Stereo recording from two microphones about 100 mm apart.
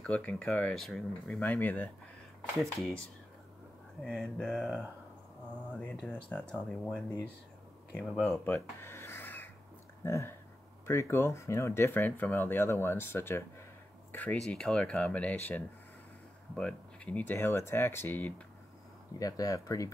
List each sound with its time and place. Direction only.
0.0 s speech: 15° left (ahead or behind)
0.7 s speech: 5° left (ahead or behind)
2.6 s speech: 5° left (ahead or behind)
4.0 s speech: 5° left (ahead or behind)
4.6 s speech: 15° right (ahead or behind)
6.0 s speech: 15° left (ahead or behind)
8.0 s speech: 10° left (ahead or behind)
19.1 s speech: 35° left (ahead or behind)